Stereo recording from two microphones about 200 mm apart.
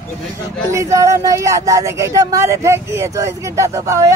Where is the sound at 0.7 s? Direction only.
15° right (ahead or behind).